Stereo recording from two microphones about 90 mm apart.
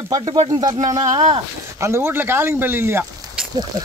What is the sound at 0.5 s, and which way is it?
Speech, 45° right (ahead or behind).